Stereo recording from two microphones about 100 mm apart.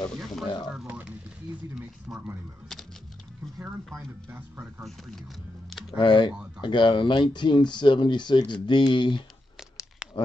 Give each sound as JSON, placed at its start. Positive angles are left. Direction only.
{"t": 1.8, "sound": "a sound", "side_deg": -5}
{"t": 2.7, "sound": "music", "side_deg": 5}
{"t": 3.6, "sound": "speech", "side_deg": -20}
{"t": 4.8, "sound": "speech", "side_deg": 0}
{"t": 5.9, "sound": "speech", "side_deg": 55}
{"t": 10.0, "sound": "a sound", "side_deg": -10}